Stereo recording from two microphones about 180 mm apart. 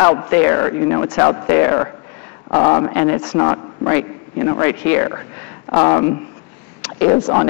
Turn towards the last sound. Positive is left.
turn(degrees=20)  # may be behind; listen again after turning